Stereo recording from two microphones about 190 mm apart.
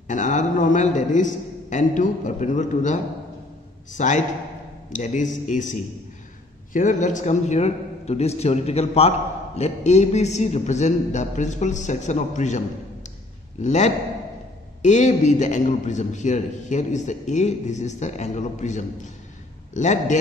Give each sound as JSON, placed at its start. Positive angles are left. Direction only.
{"t": 0.1, "sound": "a man's voice", "side_deg": 40}